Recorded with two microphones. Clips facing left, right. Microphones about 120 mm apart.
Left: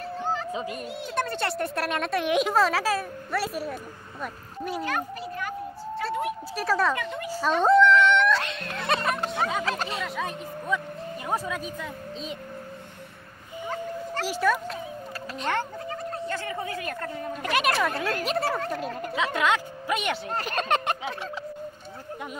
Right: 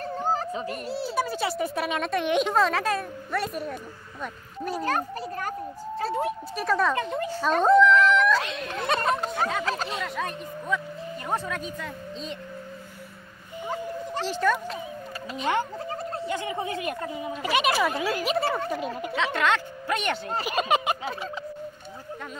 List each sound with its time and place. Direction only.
0.0 s a sound: 40° right (ahead or behind)
0.5 s speech: 15° left (ahead or behind)
0.8 s a child's voice: 35° right (ahead or behind)
1.1 s speech: 5° right (ahead or behind)
4.8 s a child's voice: 40° right (ahead or behind)
6.5 s speech: centre (ahead or behind)
7.0 s a child's voice: 30° right (ahead or behind)
7.6 s speech: centre (ahead or behind)
14.2 s speech: 5° left (ahead or behind)
16.3 s speech: 15° right (ahead or behind)
17.0 s speech: 10° right (ahead or behind)